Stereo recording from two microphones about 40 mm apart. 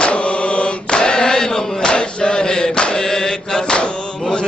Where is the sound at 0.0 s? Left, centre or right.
Left.